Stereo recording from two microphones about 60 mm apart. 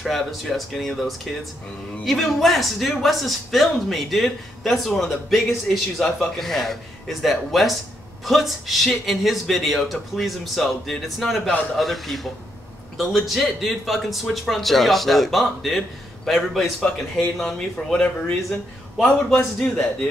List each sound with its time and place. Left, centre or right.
0.0 s speech: centre
19.6 s speech: centre